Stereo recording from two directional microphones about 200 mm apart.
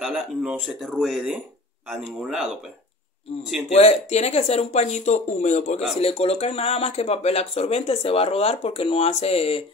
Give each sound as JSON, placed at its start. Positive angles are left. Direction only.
{"t": 0.0, "sound": "speech", "side_deg": 0}
{"t": 3.7, "sound": "speech", "side_deg": 30}